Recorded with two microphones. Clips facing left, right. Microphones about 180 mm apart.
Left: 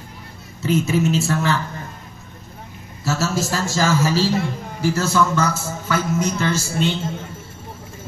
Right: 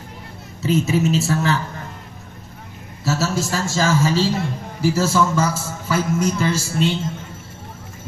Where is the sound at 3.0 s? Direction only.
Centre (ahead or behind).